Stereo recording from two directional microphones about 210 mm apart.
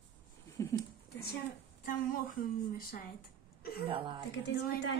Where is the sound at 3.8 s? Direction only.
25° right (ahead or behind).